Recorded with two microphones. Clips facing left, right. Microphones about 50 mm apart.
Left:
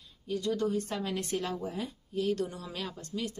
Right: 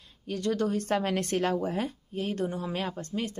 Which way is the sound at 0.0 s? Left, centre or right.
Right.